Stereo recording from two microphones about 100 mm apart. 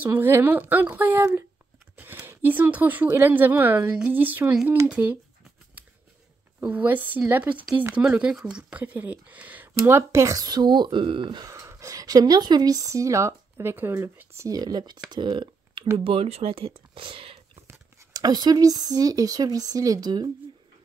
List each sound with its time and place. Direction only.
0.0 s speech: 20° right (ahead or behind)
6.6 s speech: 15° right (ahead or behind); by 11.4 s 55° right (ahead or behind)
11.4 s a woman's voice: 30° right (ahead or behind)
14.6 s speech: 45° right (ahead or behind)
15.2 s a sound: 50° right (ahead or behind)
16.0 s speech: 75° right (ahead or behind)
18.1 s speech: 45° right (ahead or behind)